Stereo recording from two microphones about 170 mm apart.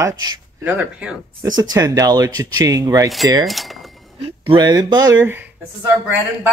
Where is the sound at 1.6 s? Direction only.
20° right (ahead or behind).